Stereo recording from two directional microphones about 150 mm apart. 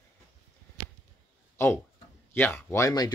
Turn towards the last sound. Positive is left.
turn(degrees=20)  # may be behind; listen again after turning